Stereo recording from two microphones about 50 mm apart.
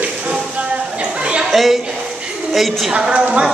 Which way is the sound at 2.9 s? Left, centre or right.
Centre.